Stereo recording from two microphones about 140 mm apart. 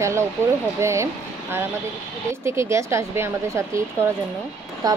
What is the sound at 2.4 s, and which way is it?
Speech, 20° right (ahead or behind).